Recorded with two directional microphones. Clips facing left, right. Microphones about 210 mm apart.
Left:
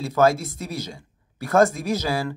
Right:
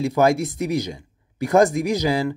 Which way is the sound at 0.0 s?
15° right (ahead or behind).